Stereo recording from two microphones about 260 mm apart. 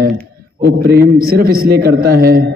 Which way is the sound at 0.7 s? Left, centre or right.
Right.